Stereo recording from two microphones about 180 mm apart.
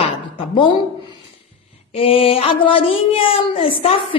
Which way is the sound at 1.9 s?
35° left (ahead or behind).